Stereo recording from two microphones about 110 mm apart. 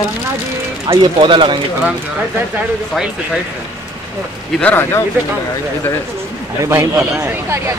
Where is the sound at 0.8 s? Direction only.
50° right (ahead or behind).